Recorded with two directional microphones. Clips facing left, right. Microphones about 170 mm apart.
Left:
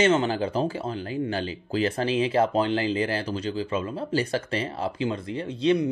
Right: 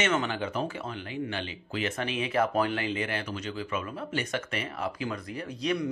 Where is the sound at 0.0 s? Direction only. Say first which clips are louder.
Left 7 dB; 30° left (ahead or behind).